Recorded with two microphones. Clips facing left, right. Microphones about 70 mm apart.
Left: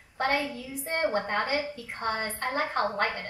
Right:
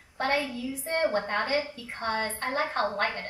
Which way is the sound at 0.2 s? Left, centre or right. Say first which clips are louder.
Even; left.